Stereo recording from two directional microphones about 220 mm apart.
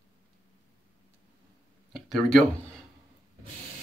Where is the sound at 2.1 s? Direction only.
Centre (ahead or behind).